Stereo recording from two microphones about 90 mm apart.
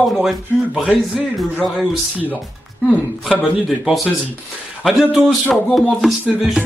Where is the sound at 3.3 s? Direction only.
5° right (ahead or behind).